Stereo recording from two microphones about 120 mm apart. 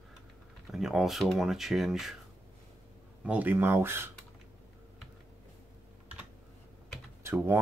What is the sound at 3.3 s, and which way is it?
Speech, 15° right (ahead or behind).